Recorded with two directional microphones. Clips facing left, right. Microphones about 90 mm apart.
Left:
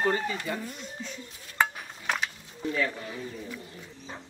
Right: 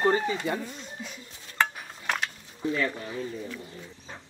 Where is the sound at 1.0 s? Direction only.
10° right (ahead or behind).